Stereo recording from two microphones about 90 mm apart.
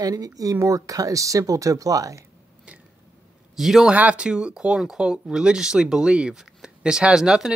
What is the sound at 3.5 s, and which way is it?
Speech, 5° right (ahead or behind).